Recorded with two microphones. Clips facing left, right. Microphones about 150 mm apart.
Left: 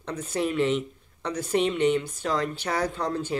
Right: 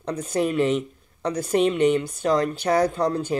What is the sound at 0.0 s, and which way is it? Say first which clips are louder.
Speech: right 4 dB; 40° right (ahead or behind).